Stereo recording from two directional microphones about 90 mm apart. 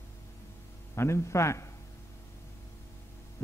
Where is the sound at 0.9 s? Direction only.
30° left (ahead or behind).